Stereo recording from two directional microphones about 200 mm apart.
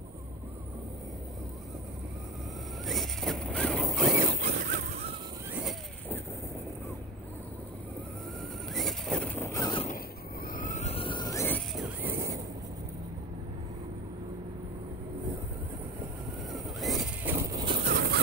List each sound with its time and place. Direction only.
2.9 s zipper: centre (ahead or behind)
4.4 s honk: 40° right (ahead or behind)
5.5 s vehicle: 5° right (ahead or behind)
8.7 s a sound: centre (ahead or behind); by 9.8 s 20° left (ahead or behind)
10.4 s vehicle: 45° left (ahead or behind); by 11.6 s 10° left (ahead or behind)
11.7 s vehicle: 5° right (ahead or behind)
16.8 s horse: centre (ahead or behind); by 17.8 s 20° right (ahead or behind)
17.8 s a sound: 50° right (ahead or behind)